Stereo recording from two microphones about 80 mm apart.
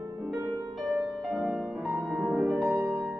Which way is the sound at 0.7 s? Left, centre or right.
Centre.